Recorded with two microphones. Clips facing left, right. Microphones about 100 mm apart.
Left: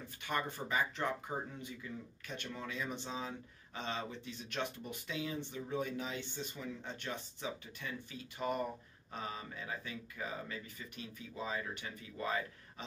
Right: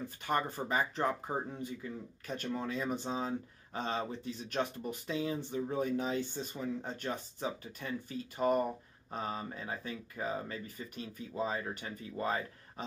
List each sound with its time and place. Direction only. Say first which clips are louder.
0.2 s speech: right 4 dB; 40° right (ahead or behind)